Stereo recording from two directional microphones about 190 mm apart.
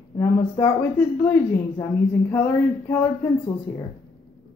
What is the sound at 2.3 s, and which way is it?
Speech, 10° left (ahead or behind).